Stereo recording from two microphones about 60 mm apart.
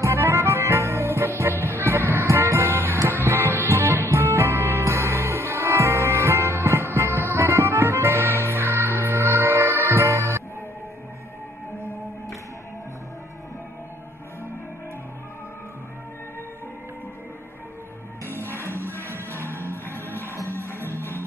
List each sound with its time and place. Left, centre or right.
0.0 s music: right
19.5 s music: right